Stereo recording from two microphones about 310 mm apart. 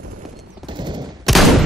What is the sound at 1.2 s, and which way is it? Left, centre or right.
Fusillade, centre.